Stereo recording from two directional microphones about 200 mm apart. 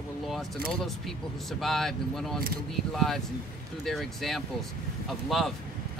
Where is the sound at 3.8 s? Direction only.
Centre (ahead or behind).